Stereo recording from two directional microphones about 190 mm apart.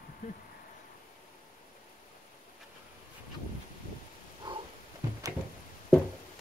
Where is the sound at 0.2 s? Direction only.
45° left (ahead or behind).